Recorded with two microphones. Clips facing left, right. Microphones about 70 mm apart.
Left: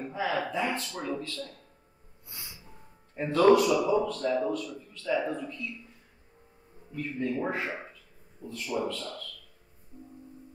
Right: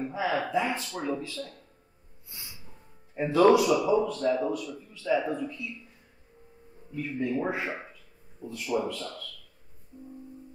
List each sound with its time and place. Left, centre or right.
0.1 s a man's voice: centre
3.2 s a man's voice: centre
7.0 s a man's voice: centre